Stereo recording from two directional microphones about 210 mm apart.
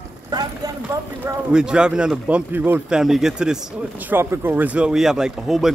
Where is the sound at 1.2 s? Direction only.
5° right (ahead or behind).